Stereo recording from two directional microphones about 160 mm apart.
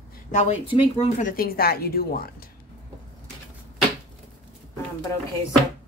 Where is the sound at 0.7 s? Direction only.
30° left (ahead or behind).